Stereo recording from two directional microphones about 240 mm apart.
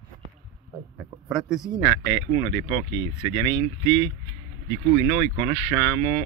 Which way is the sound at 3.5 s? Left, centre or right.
Centre.